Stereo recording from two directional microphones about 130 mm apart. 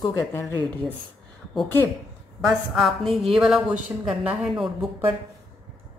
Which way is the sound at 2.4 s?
Centre (ahead or behind).